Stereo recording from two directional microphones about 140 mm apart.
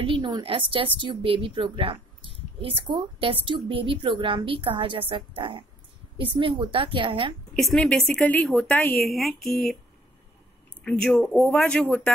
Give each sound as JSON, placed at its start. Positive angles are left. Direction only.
{"t": 0.0, "sound": "a woman's voice", "side_deg": -35}
{"t": 7.5, "sound": "a woman's voice", "side_deg": 5}
{"t": 9.0, "sound": "a woman's voice", "side_deg": 0}
{"t": 10.8, "sound": "a woman's voice", "side_deg": 5}